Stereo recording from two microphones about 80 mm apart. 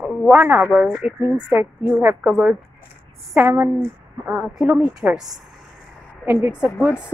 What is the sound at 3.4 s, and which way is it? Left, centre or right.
Speech, right.